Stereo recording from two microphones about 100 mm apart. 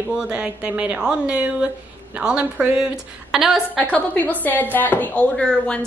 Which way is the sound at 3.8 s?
15° left (ahead or behind).